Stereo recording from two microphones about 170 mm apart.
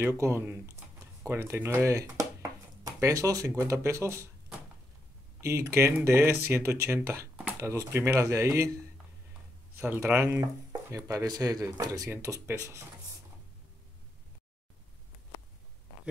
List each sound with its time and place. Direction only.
0.0 s speech: 15° right (ahead or behind)
5.4 s speech: 15° right (ahead or behind)
9.8 s speech: 15° right (ahead or behind)